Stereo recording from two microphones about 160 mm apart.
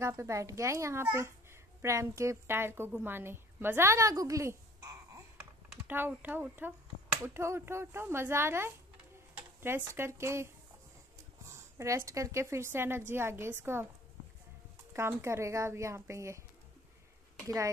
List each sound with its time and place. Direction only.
0.0 s a child's voice: 20° right (ahead or behind)
14.9 s speech: 15° right (ahead or behind)